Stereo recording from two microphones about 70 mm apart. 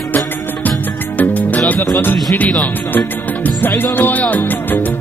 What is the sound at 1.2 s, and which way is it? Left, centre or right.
Music, left.